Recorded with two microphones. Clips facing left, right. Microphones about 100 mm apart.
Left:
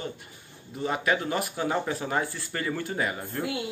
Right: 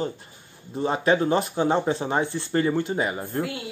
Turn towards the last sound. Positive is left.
turn(degrees=-20)  # may be behind; listen again after turning